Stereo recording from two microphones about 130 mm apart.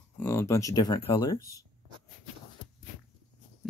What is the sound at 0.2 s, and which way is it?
Speech, 20° left (ahead or behind).